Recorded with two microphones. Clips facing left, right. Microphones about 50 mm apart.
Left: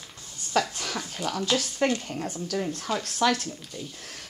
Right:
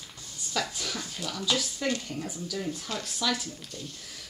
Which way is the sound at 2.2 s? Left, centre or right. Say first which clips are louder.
Left 4 dB; left.